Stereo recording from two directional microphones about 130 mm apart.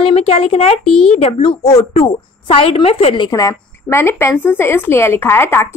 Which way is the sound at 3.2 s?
25° left (ahead or behind).